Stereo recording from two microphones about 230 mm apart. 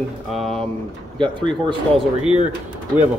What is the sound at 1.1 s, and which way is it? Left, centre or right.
Speech, right.